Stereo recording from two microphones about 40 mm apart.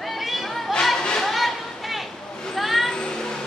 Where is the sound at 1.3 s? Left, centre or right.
Centre.